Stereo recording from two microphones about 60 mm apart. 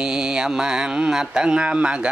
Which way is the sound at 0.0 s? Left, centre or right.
Centre.